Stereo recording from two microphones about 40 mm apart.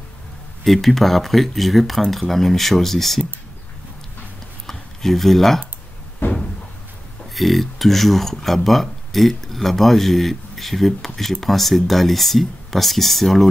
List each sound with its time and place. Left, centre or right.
0.7 s speech: centre
4.6 s a sound: centre
6.2 s cupboard open or close: left
7.3 s speech: centre